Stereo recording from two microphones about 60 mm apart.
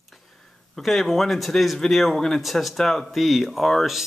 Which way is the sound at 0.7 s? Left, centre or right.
Centre.